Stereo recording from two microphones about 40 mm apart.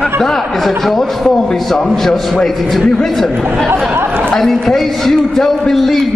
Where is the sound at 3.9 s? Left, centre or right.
Right.